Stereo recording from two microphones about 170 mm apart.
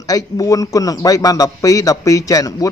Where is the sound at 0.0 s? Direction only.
20° left (ahead or behind).